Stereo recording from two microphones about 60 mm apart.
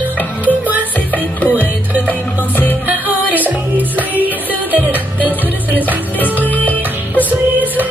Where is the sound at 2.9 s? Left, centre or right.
Right.